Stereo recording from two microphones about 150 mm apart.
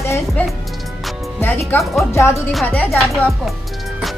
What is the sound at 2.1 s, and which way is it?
Speech, 20° left (ahead or behind).